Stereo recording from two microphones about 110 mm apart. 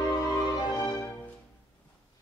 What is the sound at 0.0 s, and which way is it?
Music, 35° left (ahead or behind).